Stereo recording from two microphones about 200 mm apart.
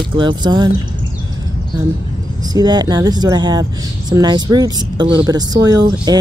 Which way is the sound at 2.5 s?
20° right (ahead or behind).